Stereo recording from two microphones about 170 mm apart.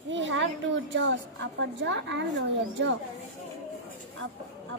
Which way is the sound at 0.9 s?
90° right.